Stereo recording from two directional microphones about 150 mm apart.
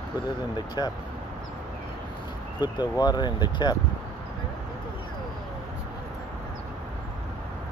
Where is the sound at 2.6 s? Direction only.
30° left (ahead or behind).